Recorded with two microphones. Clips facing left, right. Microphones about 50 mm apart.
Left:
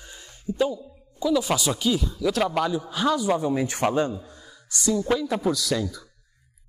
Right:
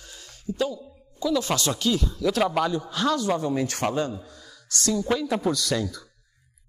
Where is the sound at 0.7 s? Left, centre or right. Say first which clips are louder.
Left 2 dB; centre.